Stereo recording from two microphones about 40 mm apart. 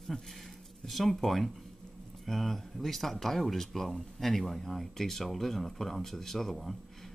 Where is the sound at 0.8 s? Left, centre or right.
Centre.